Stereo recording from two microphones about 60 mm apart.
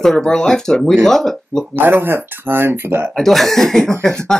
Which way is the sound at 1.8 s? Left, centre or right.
Right.